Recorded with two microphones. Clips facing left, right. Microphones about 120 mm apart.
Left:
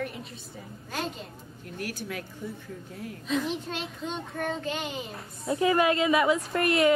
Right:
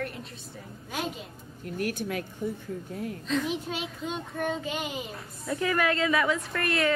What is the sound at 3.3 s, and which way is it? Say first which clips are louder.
A woman's voice: left 1 dB; centre (ahead or behind).